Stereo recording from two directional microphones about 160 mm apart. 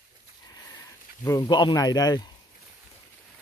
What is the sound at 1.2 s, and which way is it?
Speech, 25° left (ahead or behind).